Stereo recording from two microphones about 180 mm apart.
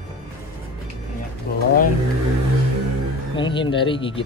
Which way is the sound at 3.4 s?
25° left (ahead or behind).